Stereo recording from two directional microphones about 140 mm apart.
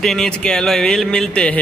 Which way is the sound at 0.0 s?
5° left (ahead or behind).